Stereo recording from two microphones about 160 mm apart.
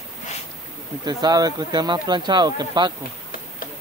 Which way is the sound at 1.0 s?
25° right (ahead or behind).